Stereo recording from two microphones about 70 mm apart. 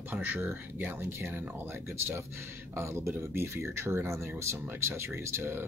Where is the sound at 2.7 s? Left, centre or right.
Right.